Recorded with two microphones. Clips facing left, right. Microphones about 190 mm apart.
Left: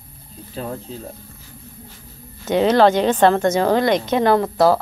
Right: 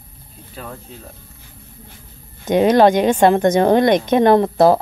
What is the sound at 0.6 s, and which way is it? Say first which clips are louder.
Speech: left 5 dB; 30° left (ahead or behind).